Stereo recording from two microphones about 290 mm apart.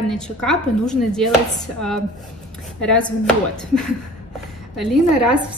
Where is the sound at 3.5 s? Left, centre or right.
Centre.